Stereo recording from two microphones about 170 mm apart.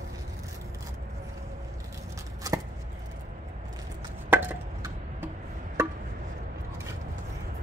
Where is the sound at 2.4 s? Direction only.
20° right (ahead or behind).